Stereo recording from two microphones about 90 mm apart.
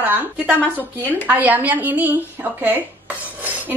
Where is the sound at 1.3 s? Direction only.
20° right (ahead or behind).